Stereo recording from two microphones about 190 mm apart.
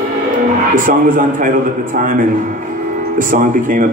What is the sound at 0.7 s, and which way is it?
Speech, 45° right (ahead or behind).